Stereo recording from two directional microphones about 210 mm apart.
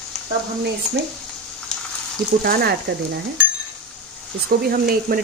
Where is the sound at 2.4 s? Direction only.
50° right (ahead or behind).